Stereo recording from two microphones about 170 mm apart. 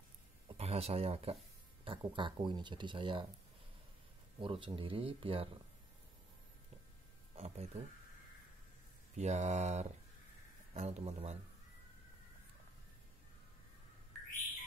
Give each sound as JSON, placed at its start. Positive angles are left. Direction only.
{"t": 0.5, "sound": "speech", "side_deg": -35}
{"t": 4.4, "sound": "speech", "side_deg": -30}
{"t": 7.3, "sound": "speech", "side_deg": -40}
{"t": 9.1, "sound": "speech", "side_deg": -45}